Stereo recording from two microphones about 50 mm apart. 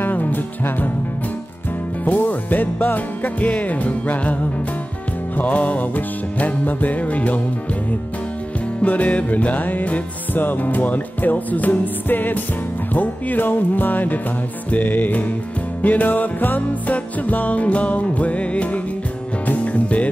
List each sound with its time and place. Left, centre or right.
0.0 s music: left
2.0 s music: left
5.4 s music: left
8.8 s music: left